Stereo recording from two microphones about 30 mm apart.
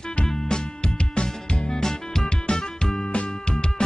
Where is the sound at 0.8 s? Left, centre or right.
Left.